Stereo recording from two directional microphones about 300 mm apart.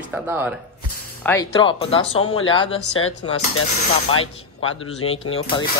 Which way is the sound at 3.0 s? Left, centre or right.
Left.